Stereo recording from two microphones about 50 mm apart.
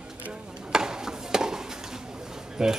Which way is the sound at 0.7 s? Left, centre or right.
Centre.